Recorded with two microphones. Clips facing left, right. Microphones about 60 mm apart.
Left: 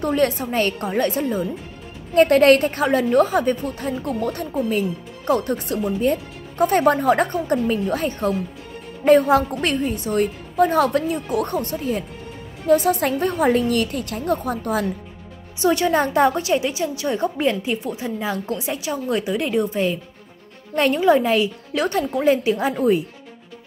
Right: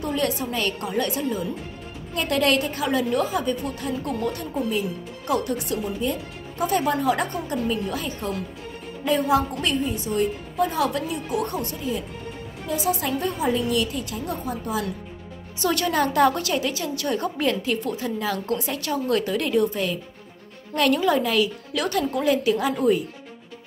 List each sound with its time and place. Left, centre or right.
0.0 s a woman's voice: left
15.6 s a woman's voice: left